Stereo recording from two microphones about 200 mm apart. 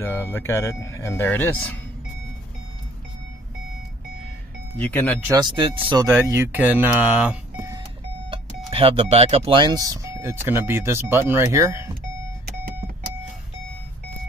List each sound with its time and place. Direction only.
0.0 s speech: 10° left (ahead or behind)
4.7 s speech: 10° left (ahead or behind)
5.2 s speech: 20° right (ahead or behind)
6.2 s speech: 10° right (ahead or behind)
8.3 s speech: 25° right (ahead or behind)
12.4 s vehicle: 50° right (ahead or behind)